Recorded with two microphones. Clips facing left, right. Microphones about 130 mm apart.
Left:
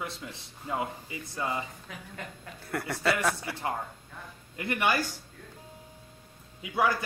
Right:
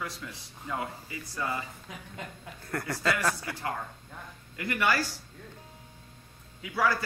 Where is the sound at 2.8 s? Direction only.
15° left (ahead or behind).